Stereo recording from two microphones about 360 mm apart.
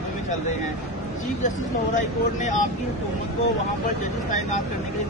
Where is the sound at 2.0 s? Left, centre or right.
Centre.